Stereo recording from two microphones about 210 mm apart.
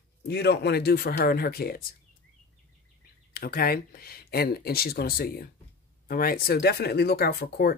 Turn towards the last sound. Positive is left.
turn(degrees=45)  # may be behind; listen again after turning